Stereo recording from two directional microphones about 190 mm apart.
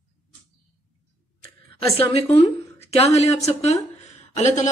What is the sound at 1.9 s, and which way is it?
A woman's voice, 30° left (ahead or behind).